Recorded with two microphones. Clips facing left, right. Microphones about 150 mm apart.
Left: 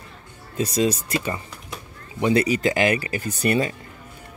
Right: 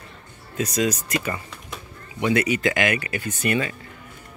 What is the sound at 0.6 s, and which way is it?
Speech, 30° left (ahead or behind).